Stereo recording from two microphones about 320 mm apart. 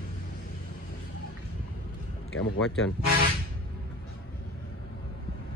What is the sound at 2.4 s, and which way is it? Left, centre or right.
Speech, left.